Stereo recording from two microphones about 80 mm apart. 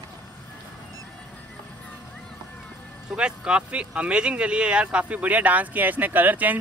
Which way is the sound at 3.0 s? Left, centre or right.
Centre.